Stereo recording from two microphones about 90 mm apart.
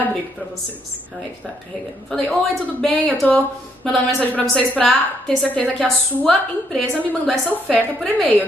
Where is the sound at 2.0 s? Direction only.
15° left (ahead or behind).